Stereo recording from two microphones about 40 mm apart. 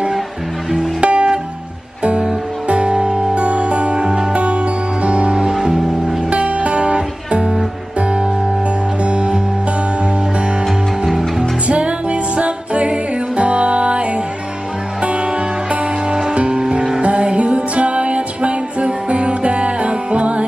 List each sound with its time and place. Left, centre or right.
1.0 s music: right
2.7 s music: right; by 6.1 s centre
6.3 s music: right
9.0 s music: right
11.1 s music: centre
11.6 s music: right
16.1 s music: centre
17.0 s music: right